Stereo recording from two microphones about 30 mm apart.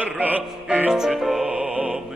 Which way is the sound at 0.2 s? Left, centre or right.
Right.